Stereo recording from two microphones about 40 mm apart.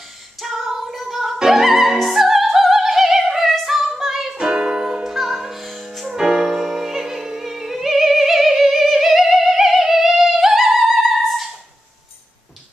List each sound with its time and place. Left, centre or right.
0.4 s opera: centre
4.4 s music: right
5.0 s music: centre
6.1 s music: centre